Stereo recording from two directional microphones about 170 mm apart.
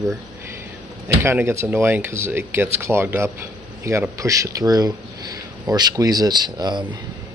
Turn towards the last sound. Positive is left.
turn(degrees=-25)  # may be behind; listen again after turning